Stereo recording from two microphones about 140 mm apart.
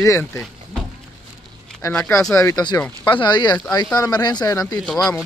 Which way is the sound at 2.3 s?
25° left (ahead or behind).